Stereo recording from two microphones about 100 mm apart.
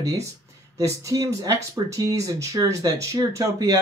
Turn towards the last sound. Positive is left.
turn(degrees=-35)  # may be behind; listen again after turning